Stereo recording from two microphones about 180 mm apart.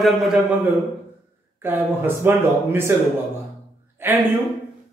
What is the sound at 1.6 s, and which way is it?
Speech, 10° right (ahead or behind).